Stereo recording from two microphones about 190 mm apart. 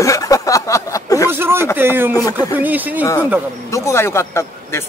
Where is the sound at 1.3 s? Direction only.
10° right (ahead or behind).